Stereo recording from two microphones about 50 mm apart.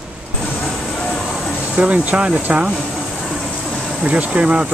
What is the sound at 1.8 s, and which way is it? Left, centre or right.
Speech, right.